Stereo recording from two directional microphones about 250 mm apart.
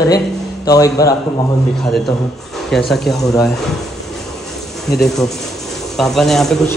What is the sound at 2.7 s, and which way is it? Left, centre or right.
Speech, centre.